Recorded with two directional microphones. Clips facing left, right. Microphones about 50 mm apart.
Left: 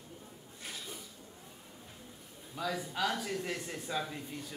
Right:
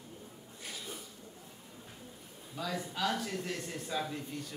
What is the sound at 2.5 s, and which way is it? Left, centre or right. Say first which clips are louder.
A man's voice: left 1 dB; centre.